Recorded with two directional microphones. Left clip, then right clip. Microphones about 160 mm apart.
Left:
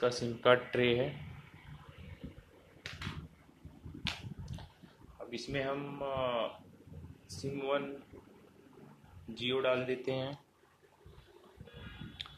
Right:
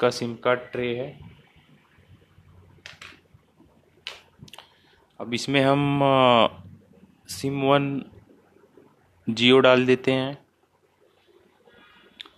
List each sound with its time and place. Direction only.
0.0 s speech: 35° right (ahead or behind)
0.4 s speech: 15° right (ahead or behind)
5.3 s speech: 65° right (ahead or behind)
7.5 s speech: 50° right (ahead or behind)
9.3 s speech: 55° right (ahead or behind)